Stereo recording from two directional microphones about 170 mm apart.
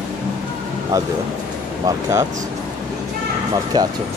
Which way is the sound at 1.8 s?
20° right (ahead or behind).